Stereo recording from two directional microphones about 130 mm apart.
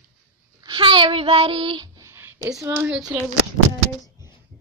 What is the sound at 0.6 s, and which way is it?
Speech, 40° right (ahead or behind).